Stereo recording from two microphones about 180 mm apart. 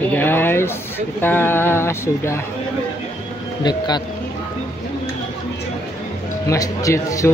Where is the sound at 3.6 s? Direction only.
25° left (ahead or behind).